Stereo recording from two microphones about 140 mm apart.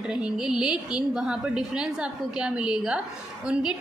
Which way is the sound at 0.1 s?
5° right (ahead or behind).